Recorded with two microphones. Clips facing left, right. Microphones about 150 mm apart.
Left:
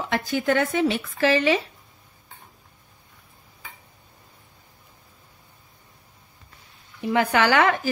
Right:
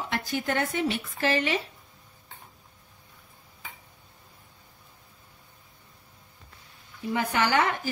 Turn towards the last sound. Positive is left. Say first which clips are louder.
# left 5 dB
turn(degrees=90)